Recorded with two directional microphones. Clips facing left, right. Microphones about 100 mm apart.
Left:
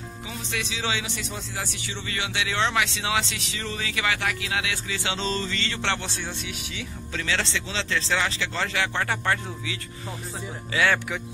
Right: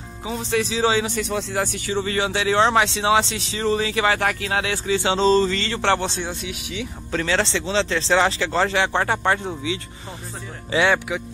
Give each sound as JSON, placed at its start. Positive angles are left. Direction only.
{"t": 0.3, "sound": "speech", "side_deg": -35}
{"t": 1.3, "sound": "speech", "side_deg": -55}
{"t": 7.1, "sound": "speech", "side_deg": -45}
{"t": 10.7, "sound": "speech", "side_deg": -25}